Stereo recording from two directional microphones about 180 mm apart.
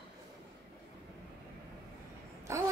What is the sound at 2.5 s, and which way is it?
Speech, 15° right (ahead or behind).